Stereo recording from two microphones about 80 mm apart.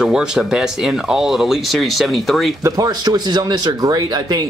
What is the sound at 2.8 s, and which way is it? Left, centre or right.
Speech, right.